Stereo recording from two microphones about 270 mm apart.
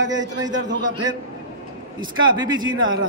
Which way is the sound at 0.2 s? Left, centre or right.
Right.